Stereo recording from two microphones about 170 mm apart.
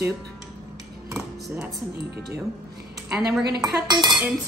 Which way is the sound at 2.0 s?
70° right (ahead or behind).